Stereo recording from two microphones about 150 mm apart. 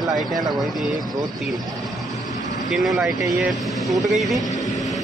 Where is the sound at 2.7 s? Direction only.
Centre (ahead or behind).